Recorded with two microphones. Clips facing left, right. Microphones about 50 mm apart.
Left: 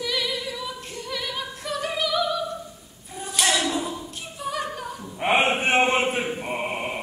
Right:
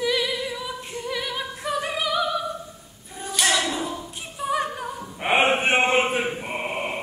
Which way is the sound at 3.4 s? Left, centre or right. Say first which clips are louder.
Right 1 dB; centre.